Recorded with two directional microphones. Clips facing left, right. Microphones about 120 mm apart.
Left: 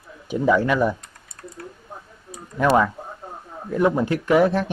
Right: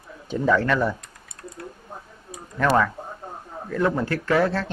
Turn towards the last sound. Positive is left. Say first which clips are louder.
# left 4 dB
turn(degrees=15)  # may be behind; listen again after turning